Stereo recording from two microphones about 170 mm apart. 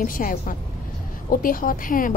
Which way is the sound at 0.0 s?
55° left (ahead or behind).